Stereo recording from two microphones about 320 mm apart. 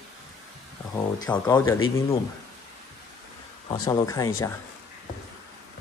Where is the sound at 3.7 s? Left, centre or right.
Centre.